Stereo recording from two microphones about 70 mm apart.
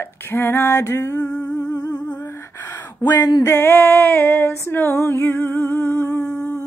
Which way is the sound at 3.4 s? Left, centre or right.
Left.